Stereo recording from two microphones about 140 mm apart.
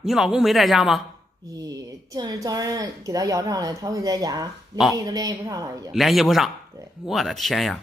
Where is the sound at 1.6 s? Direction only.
25° right (ahead or behind).